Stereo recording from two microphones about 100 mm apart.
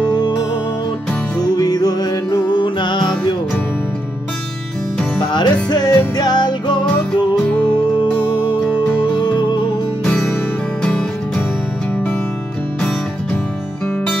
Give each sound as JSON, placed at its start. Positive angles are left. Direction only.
{"t": 1.4, "sound": "music", "side_deg": 40}
{"t": 5.3, "sound": "music", "side_deg": 45}
{"t": 9.1, "sound": "music", "side_deg": 50}
{"t": 10.8, "sound": "music", "side_deg": 15}